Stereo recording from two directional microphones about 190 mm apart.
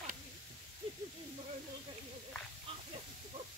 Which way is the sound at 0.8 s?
30° right (ahead or behind).